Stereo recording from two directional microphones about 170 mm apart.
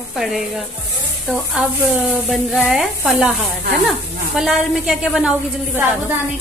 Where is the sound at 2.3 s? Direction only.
Centre (ahead or behind).